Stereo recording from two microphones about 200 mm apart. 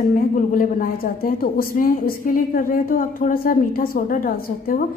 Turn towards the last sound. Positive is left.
turn(degrees=45)  # may be behind; listen again after turning